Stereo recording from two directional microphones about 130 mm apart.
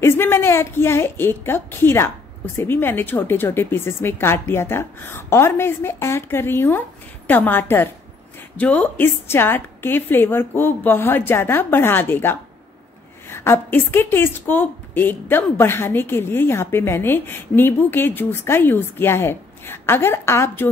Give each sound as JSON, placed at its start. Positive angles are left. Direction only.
{"t": 0.0, "sound": "a woman's voice", "side_deg": 20}